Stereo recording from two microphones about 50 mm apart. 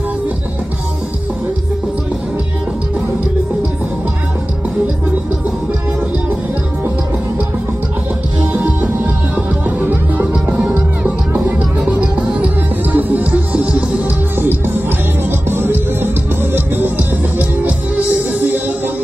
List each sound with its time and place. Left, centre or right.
8.8 s music: right
11.3 s music: right
13.3 s music: right
14.4 s music: right
17.6 s music: right